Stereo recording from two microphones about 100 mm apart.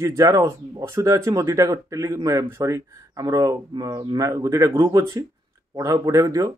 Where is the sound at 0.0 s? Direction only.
35° right (ahead or behind).